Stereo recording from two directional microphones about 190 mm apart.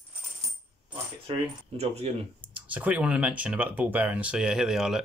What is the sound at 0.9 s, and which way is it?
Speech, 30° right (ahead or behind).